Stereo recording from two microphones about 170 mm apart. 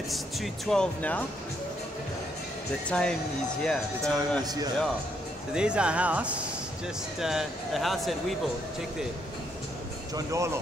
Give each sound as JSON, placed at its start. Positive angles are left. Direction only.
{"t": 0.1, "sound": "speech", "side_deg": 0}
{"t": 2.9, "sound": "speech", "side_deg": 5}
{"t": 4.4, "sound": "a man's voice", "side_deg": -20}
{"t": 5.5, "sound": "speech", "side_deg": -5}
{"t": 10.1, "sound": "speech", "side_deg": -20}